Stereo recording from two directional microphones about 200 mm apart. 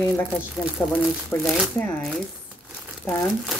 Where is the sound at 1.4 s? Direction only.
Centre (ahead or behind).